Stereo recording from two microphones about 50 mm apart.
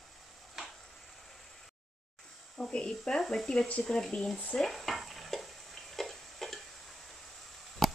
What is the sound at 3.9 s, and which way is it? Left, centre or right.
Speech, centre.